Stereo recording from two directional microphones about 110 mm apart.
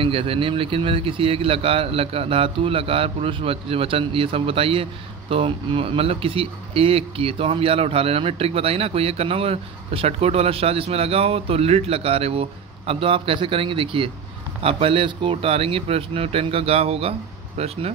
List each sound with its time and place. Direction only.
0.0 s speech: 55° right (ahead or behind)